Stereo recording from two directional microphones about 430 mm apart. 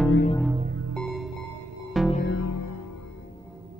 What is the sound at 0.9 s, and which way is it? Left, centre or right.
Music, centre.